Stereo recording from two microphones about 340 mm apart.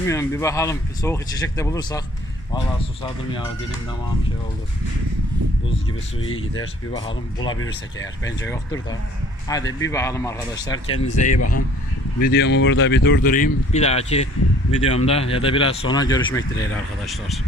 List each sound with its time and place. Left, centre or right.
0.0 s speech: centre
9.5 s speech: centre
11.0 s speech: left
11.3 s speech: left
12.2 s speech: left; by 17.4 s centre